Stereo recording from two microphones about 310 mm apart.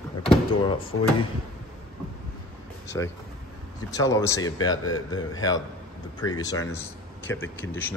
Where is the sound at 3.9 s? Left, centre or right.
Centre.